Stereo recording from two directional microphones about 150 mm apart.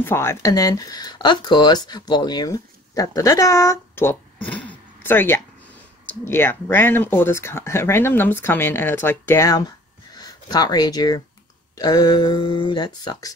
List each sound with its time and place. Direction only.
0.0 s speech: 15° left (ahead or behind)
4.5 s zipper: 10° left (ahead or behind)
6.2 s speech: 15° left (ahead or behind)